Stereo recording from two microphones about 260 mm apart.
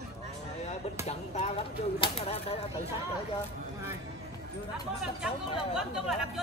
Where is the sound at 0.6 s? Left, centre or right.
Left.